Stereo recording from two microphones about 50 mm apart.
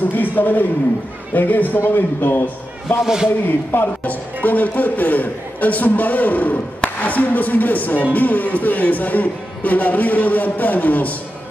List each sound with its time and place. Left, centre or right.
0.0 s a man's voice: left